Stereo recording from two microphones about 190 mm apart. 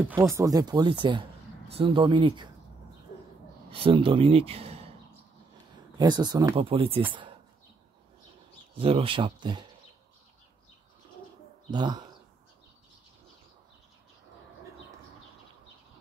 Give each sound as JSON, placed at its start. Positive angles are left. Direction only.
{"t": 0.1, "sound": "speech", "side_deg": -15}
{"t": 3.7, "sound": "speech", "side_deg": -30}
{"t": 5.9, "sound": "speech", "side_deg": -20}
{"t": 8.7, "sound": "speech", "side_deg": -30}
{"t": 11.7, "sound": "speech", "side_deg": -20}